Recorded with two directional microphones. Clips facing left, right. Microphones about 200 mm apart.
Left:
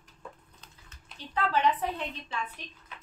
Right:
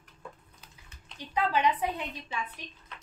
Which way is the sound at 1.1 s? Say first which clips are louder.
Right 1 dB; 10° right (ahead or behind).